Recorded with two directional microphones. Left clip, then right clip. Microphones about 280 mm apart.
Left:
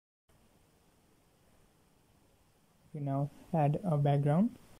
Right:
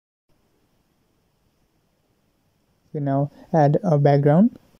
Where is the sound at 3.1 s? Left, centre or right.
Centre.